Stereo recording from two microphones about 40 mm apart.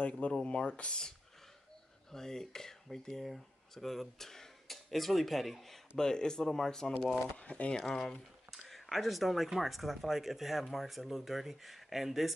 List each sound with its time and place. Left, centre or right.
0.3 s speech: left
2.1 s dishes: centre
3.3 s speech: centre
5.9 s dishes: centre
7.3 s speech: left
7.7 s dishes: centre
8.5 s a sound: centre
9.6 s speech: centre